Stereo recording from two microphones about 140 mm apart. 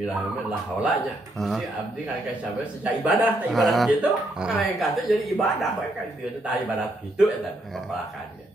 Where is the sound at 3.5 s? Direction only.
Centre (ahead or behind).